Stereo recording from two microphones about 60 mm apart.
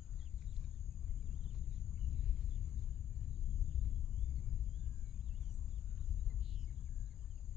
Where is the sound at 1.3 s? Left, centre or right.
Centre.